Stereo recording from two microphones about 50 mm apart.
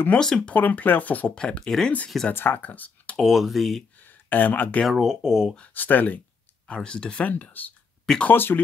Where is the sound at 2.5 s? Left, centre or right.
Left.